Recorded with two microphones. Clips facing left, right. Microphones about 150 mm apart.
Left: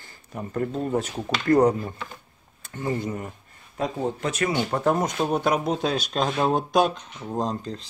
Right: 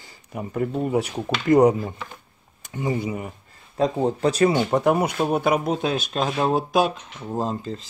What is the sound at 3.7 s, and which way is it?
Speech, 30° right (ahead or behind).